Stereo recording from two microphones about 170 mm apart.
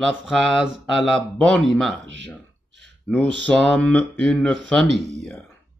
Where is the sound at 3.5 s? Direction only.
5° left (ahead or behind).